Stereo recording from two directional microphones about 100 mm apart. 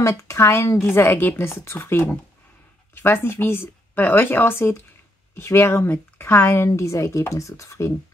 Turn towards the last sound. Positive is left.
turn(degrees=30)  # may be behind; listen again after turning